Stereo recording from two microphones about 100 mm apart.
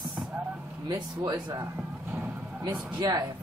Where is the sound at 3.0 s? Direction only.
40° right (ahead or behind).